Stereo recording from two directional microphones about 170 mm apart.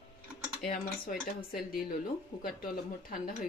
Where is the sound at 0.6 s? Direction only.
60° left (ahead or behind).